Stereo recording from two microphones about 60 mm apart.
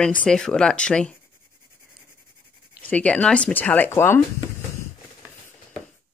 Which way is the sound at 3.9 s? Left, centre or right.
Left.